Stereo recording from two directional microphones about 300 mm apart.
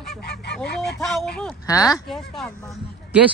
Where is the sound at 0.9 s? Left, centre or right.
Centre.